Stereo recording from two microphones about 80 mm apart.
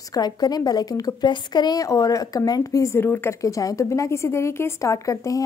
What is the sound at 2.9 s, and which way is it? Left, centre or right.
Speech, left.